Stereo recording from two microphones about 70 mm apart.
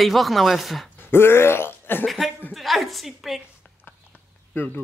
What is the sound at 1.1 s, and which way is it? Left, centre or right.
Speech, left.